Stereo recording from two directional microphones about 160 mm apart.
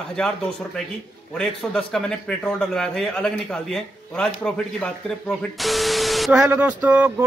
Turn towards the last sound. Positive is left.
turn(degrees=-10)  # may be behind; listen again after turning